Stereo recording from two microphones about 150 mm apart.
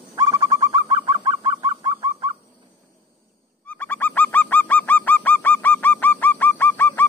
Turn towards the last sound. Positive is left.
turn(degrees=10)  # may be behind; listen again after turning